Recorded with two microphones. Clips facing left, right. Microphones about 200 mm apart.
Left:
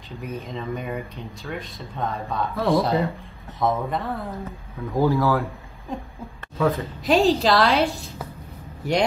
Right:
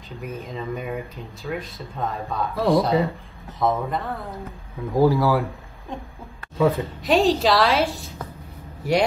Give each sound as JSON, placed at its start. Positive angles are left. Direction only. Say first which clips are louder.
{"t": 0.2, "sound": "speech", "louder": "even", "side_deg": 0}
{"t": 4.9, "sound": "speech", "louder": "right 2 dB", "side_deg": -15}
{"t": 5.9, "sound": "speech", "louder": "left 2 dB", "side_deg": 0}